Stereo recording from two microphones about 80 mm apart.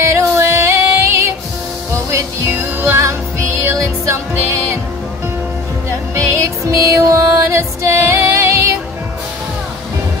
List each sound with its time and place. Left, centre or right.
0.1 s music: right
2.8 s music: right
5.9 s music: right